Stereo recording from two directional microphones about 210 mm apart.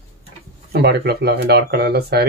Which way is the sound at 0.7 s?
50° right (ahead or behind).